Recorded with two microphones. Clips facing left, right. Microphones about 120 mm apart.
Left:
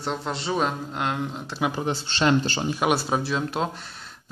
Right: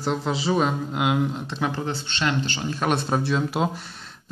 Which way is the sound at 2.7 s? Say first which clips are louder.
Even; 10° left (ahead or behind).